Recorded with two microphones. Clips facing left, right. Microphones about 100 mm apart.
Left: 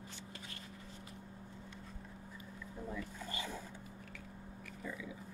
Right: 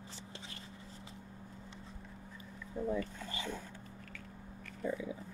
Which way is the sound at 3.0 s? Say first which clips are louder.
Right 3 dB; 5° left (ahead or behind).